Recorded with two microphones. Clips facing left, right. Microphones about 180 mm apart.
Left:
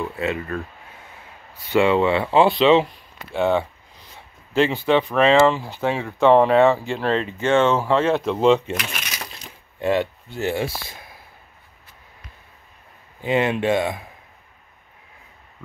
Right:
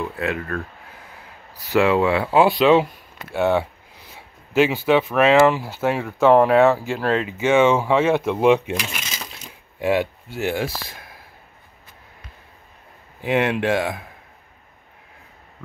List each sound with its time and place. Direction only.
0.0 s speech: centre (ahead or behind)
9.0 s a sound: 25° right (ahead or behind)
9.8 s speech: 10° right (ahead or behind)
13.2 s speech: 5° right (ahead or behind)